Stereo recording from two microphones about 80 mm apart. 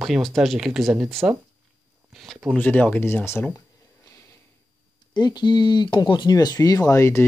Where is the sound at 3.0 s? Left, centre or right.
Left.